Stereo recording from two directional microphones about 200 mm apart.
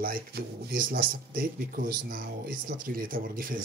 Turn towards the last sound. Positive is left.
turn(degrees=-45)  # may be behind; listen again after turning